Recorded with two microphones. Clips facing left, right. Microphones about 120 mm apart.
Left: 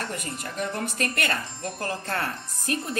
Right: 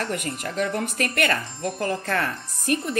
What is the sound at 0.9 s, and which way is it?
Speech, 30° left (ahead or behind).